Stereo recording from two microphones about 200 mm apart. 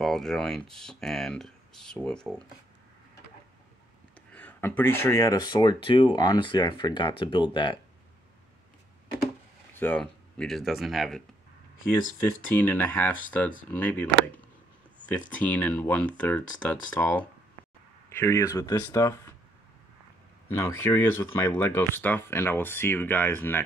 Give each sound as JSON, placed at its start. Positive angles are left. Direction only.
{"t": 0.0, "sound": "speech", "side_deg": 0}
{"t": 4.3, "sound": "speech", "side_deg": 10}
{"t": 9.8, "sound": "speech", "side_deg": 10}
{"t": 12.5, "sound": "speech", "side_deg": 10}
{"t": 15.0, "sound": "speech", "side_deg": 5}
{"t": 20.4, "sound": "speech", "side_deg": 10}